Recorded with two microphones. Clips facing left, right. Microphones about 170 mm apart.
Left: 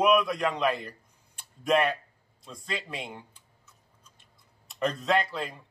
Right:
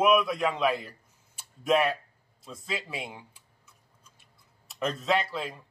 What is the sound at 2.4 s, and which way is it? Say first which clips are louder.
Tick-tock: even; 5° right (ahead or behind).